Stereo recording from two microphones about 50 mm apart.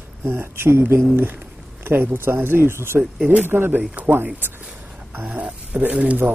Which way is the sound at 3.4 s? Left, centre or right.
Right.